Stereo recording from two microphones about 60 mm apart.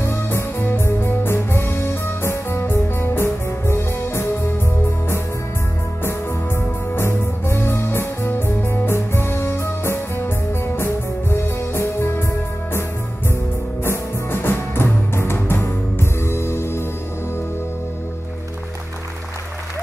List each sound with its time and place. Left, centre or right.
0.0 s music: left
6.0 s music: left
13.8 s music: left